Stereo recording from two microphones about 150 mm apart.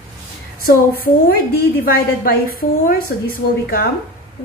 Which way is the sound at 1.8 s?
80° left.